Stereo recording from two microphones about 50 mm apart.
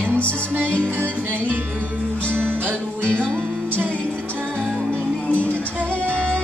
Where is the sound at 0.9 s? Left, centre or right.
Right.